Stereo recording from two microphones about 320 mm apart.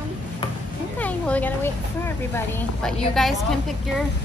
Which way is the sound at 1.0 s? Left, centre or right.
Centre.